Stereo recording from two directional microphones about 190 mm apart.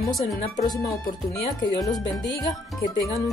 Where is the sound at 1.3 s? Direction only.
20° left (ahead or behind).